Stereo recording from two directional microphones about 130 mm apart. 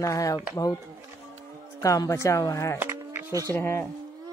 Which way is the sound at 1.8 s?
25° left (ahead or behind).